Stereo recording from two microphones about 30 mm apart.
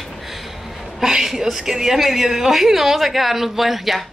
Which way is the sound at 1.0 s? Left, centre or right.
Centre.